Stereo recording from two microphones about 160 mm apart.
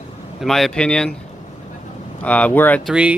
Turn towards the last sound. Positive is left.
turn(degrees=-10)  # may be behind; listen again after turning